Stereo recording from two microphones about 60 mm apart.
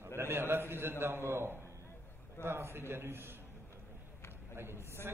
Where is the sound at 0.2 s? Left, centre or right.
Right.